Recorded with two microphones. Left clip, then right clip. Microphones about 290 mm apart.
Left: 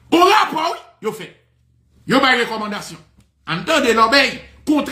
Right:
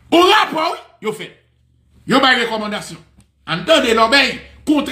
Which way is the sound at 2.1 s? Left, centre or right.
Left.